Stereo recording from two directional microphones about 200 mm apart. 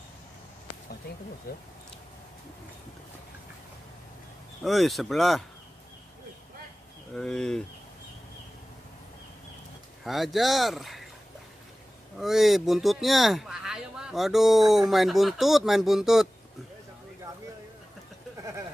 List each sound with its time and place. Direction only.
1.5 s speech: 50° left (ahead or behind)
4.6 s speech: centre (ahead or behind)
7.2 s speech: centre (ahead or behind)
10.0 s speech: centre (ahead or behind)
12.2 s speech: centre (ahead or behind)